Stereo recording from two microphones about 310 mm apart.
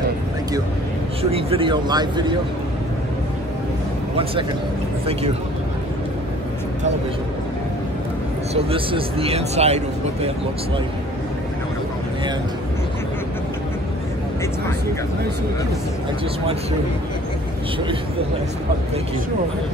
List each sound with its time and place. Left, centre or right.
1.3 s speech: centre
8.5 s speech: centre